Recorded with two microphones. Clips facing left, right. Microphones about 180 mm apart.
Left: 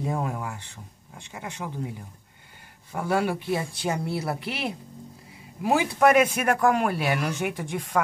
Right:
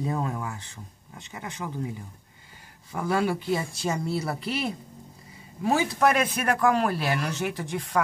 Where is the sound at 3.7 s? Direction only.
65° left (ahead or behind).